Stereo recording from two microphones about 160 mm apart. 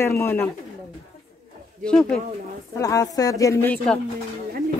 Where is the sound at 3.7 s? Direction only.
5° left (ahead or behind).